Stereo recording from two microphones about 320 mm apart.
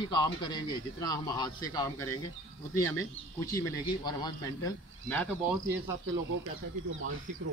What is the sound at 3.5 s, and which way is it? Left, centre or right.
Speech, centre.